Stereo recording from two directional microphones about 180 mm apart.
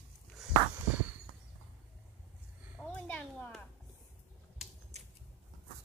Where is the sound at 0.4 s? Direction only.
Centre (ahead or behind).